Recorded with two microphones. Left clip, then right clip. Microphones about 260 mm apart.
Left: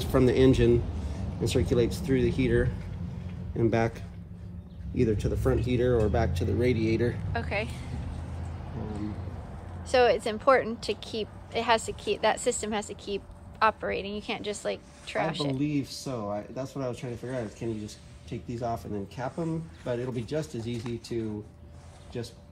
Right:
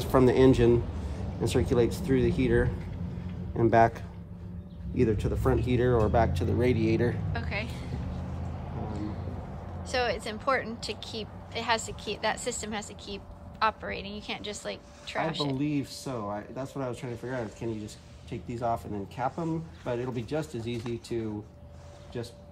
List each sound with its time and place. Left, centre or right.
0.0 s speech: right
7.3 s a woman's voice: centre
9.8 s a woman's voice: centre
15.7 s speech: centre